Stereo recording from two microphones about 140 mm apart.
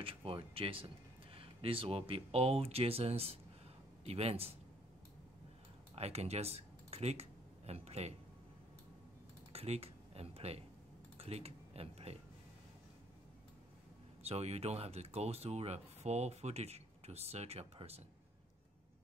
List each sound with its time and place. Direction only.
0.0 s speech: 40° right (ahead or behind)
5.9 s speech: 45° right (ahead or behind)
9.5 s a sound: 45° right (ahead or behind)
11.1 s speech: 45° right (ahead or behind)
14.2 s speech: 50° right (ahead or behind)